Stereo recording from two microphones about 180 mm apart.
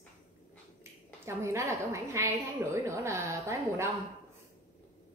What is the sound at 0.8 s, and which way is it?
A woman's voice, 15° right (ahead or behind).